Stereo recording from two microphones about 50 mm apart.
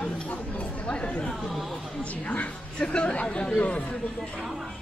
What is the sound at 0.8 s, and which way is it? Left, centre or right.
Chatter, centre.